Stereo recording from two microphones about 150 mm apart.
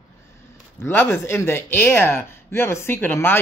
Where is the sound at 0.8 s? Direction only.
15° left (ahead or behind).